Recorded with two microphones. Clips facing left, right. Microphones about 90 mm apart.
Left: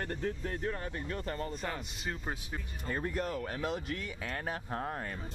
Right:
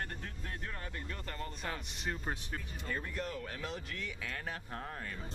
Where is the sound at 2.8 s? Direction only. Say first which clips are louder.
Left 6 dB; 30° left (ahead or behind).